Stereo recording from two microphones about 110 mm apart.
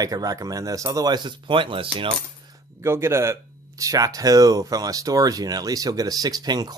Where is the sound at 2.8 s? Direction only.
25° right (ahead or behind).